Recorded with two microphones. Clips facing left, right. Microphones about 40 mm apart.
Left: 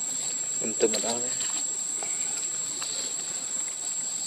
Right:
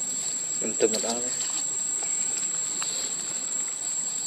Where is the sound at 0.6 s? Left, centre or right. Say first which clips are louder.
Right 1 dB; centre.